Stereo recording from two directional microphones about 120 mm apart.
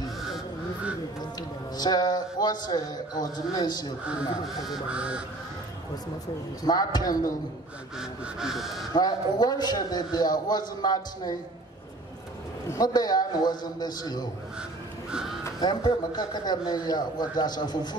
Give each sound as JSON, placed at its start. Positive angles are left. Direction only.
{"t": 1.8, "sound": "a man's voice", "side_deg": 35}
{"t": 4.6, "sound": "a sound", "side_deg": -10}
{"t": 6.6, "sound": "a man's voice", "side_deg": 35}
{"t": 8.0, "sound": "duck", "side_deg": -5}
{"t": 8.9, "sound": "a man's voice", "side_deg": 35}
{"t": 12.6, "sound": "a man's voice", "side_deg": 30}
{"t": 15.6, "sound": "a man's voice", "side_deg": 35}